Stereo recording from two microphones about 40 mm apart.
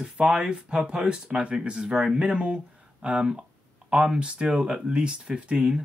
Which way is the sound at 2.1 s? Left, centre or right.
Right.